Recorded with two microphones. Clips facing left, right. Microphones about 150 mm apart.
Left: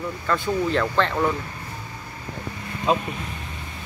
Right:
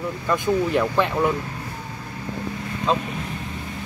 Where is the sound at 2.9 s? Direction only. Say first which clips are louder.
Left 1 dB; 10° left (ahead or behind).